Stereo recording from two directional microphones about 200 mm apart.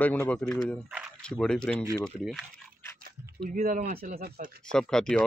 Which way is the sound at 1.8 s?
15° right (ahead or behind).